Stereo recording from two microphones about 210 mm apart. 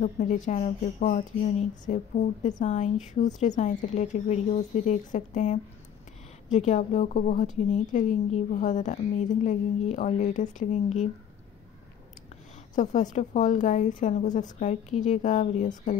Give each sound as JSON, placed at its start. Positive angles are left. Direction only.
{"t": 0.0, "sound": "a woman's voice", "side_deg": 35}
{"t": 12.7, "sound": "a woman's voice", "side_deg": 35}